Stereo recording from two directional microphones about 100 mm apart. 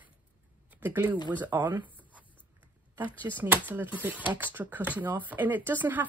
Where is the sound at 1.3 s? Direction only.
20° right (ahead or behind).